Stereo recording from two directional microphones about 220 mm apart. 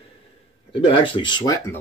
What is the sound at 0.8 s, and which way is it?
Speech, 25° left (ahead or behind).